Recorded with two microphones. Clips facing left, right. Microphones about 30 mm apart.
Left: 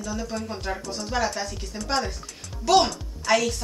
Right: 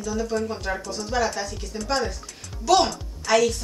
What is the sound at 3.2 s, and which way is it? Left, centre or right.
Speech, centre.